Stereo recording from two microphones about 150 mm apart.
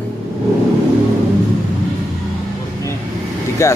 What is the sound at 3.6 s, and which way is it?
Speech, 20° left (ahead or behind).